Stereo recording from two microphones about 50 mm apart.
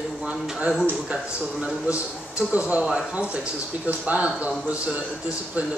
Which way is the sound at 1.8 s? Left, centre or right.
Right.